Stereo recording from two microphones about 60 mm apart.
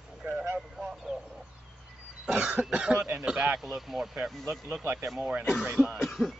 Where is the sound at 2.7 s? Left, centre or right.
Right.